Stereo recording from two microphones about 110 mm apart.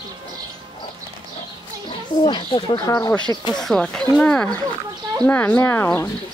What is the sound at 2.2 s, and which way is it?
Speech, 45° left (ahead or behind).